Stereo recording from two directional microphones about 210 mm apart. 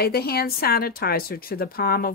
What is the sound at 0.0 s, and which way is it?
Speech, 50° left (ahead or behind).